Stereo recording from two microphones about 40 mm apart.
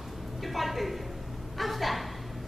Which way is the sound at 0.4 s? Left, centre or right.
Centre.